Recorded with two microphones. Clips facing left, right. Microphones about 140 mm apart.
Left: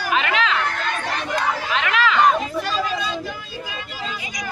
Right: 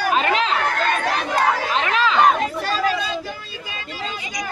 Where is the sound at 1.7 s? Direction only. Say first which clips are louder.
Right 1 dB; 30° right (ahead or behind).